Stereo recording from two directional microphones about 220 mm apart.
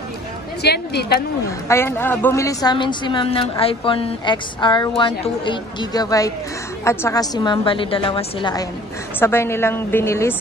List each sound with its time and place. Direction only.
0.6 s a woman's voice: 50° left (ahead or behind)
1.7 s a woman's voice: 10° left (ahead or behind)